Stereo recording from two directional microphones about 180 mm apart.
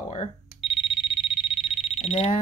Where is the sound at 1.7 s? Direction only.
35° left (ahead or behind).